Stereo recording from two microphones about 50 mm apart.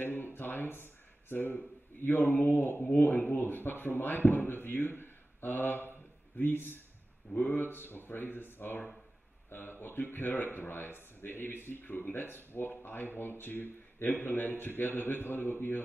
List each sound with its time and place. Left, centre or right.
0.0 s a sound: left
1.3 s speech: left
7.3 s speech: left
7.6 s speech: left